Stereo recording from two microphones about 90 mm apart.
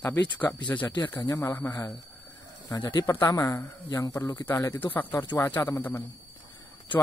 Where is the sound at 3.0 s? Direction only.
35° left (ahead or behind).